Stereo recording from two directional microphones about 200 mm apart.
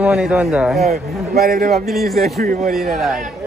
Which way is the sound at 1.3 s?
50° right (ahead or behind).